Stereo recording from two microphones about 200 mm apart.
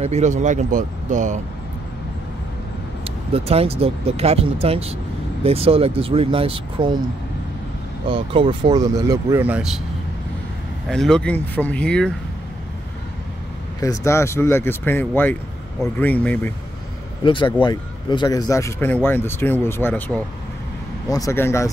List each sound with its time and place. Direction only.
0.0 s speech: 35° right (ahead or behind)
3.3 s speech: 30° right (ahead or behind)
8.1 s speech: 25° right (ahead or behind); by 9.8 s 5° right (ahead or behind)
10.9 s speech: 5° left (ahead or behind)
13.7 s a man's voice: 15° left (ahead or behind)
17.2 s a man's voice: 25° left (ahead or behind)